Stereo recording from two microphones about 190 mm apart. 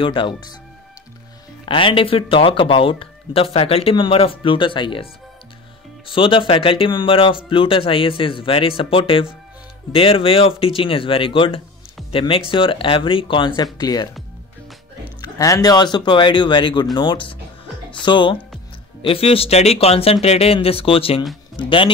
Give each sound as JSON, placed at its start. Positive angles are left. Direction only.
{"t": 0.0, "sound": "speech", "side_deg": 25}
{"t": 1.7, "sound": "speech", "side_deg": 25}
{"t": 15.2, "sound": "speech", "side_deg": 20}